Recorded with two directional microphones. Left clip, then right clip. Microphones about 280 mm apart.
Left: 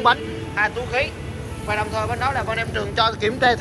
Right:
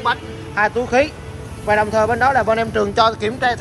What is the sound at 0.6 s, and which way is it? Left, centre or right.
A man's voice, right.